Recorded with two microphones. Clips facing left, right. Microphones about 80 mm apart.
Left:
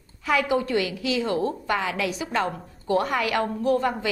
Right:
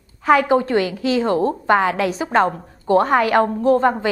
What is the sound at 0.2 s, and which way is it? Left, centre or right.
A woman's voice, right.